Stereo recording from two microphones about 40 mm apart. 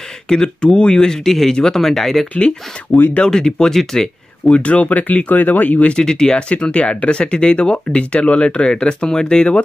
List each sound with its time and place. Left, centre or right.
0.3 s speech: centre
2.3 s speech: left
3.3 s speech: centre
4.6 s speech: left
5.9 s speech: centre